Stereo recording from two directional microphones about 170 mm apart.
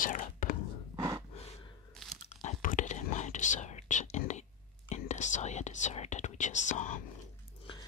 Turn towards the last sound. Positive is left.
turn(degrees=45)  # may be behind; listen again after turning